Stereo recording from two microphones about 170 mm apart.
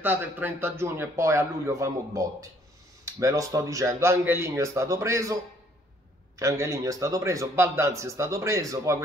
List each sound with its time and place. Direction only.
0.0 s a man's voice: 10° right (ahead or behind)